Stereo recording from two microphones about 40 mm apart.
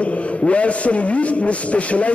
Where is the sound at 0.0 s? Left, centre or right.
Left.